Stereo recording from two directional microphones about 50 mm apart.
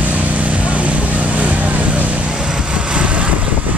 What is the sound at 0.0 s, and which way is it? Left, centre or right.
Vehicle, right.